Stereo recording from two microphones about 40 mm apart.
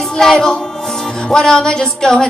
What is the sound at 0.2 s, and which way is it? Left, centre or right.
Music, centre.